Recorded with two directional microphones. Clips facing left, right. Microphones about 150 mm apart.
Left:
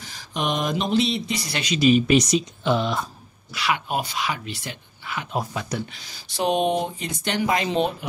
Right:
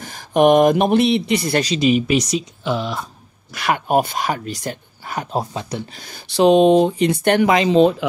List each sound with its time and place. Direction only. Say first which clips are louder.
0.0 s speech: right 14 dB; 50° right (ahead or behind)
1.8 s speech: left 2 dB; 15° right (ahead or behind)
2.0 s speech: even; 5° right (ahead or behind)
3.5 s speech: right 7 dB; 50° right (ahead or behind)
5.3 s speech: right 2 dB; 30° right (ahead or behind)
5.9 s speech: right 6 dB; 50° right (ahead or behind)
6.3 s speech: right 10 dB; 90° right; by 7.6 s 75° right (ahead or behind)